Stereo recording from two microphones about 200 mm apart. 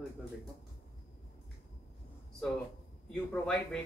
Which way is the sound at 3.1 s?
5° left (ahead or behind).